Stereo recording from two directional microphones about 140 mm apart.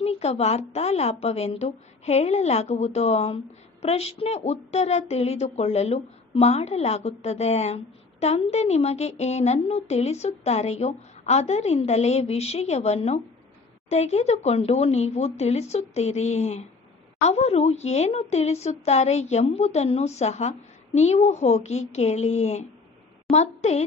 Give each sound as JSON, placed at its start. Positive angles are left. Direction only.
{"t": 0.0, "sound": "speech", "side_deg": 50}